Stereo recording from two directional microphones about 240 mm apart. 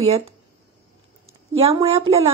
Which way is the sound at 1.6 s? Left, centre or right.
Right.